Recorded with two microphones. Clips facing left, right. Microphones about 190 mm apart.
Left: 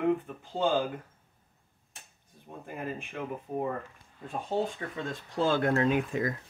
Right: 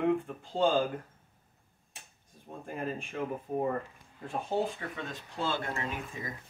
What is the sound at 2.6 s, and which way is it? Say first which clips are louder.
Speech: right 1 dB; 5° left (ahead or behind).